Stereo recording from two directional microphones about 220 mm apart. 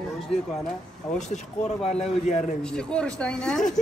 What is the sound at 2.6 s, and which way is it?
A man's voice, 5° left (ahead or behind).